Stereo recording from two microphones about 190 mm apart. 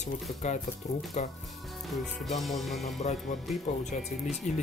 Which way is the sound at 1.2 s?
35° left (ahead or behind).